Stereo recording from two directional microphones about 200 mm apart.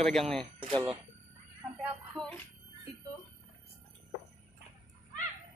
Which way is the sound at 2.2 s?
Centre (ahead or behind).